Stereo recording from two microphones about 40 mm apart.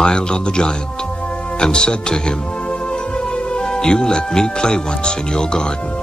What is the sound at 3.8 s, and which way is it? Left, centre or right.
Speech, centre.